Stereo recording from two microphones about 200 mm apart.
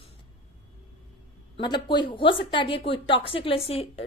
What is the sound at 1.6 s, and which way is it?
A woman's voice, 25° left (ahead or behind).